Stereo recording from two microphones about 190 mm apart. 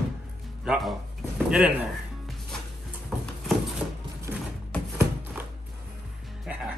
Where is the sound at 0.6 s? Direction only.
Centre (ahead or behind).